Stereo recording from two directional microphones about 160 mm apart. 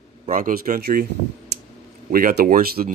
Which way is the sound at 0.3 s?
55° right (ahead or behind).